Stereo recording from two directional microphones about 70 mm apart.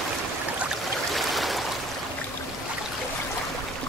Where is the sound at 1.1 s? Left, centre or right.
Centre.